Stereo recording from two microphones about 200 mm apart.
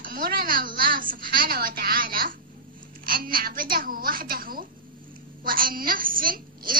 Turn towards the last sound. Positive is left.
turn(degrees=-45)  # may be behind; listen again after turning